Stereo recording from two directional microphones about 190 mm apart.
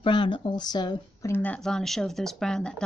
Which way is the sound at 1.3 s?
10° left (ahead or behind).